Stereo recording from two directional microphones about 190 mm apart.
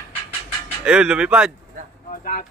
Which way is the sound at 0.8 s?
5° right (ahead or behind).